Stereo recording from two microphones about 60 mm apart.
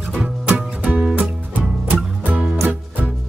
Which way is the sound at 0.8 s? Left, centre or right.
Right.